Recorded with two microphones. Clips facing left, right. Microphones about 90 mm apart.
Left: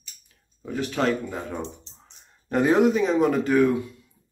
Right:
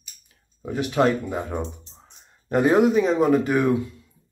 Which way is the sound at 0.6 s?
15° right (ahead or behind).